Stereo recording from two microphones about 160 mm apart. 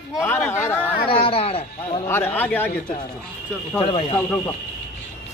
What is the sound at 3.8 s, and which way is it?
Speech, 35° left (ahead or behind).